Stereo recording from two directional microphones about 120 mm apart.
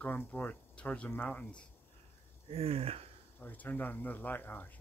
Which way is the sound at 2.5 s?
55° right (ahead or behind).